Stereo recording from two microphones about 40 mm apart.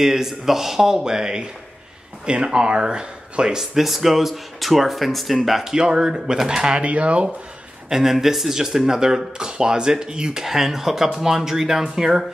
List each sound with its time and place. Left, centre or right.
0.0 s speech: centre
5.7 s speech: centre
6.8 s speech: right
7.9 s speech: centre
10.4 s speech: centre